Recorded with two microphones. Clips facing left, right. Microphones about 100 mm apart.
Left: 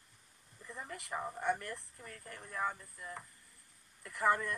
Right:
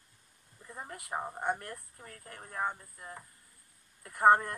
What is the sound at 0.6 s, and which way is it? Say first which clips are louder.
Speech: right 2 dB; 35° right (ahead or behind).